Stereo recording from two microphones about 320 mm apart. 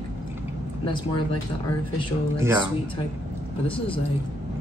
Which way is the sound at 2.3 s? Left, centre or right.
Centre.